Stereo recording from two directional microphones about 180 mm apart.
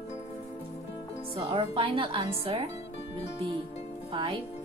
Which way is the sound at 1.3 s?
30° right (ahead or behind).